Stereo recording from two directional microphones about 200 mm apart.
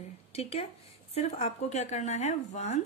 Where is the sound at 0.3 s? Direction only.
30° left (ahead or behind).